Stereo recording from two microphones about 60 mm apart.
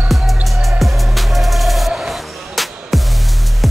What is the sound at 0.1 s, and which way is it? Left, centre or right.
Music, centre.